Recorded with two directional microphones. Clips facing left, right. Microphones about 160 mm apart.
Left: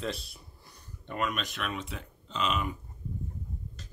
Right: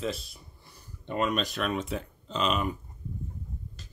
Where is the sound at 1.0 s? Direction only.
25° right (ahead or behind).